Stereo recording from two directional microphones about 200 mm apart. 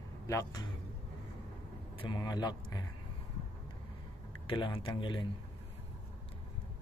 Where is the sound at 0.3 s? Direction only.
15° left (ahead or behind).